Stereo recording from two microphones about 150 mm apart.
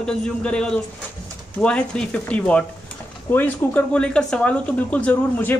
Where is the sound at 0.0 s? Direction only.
5° left (ahead or behind).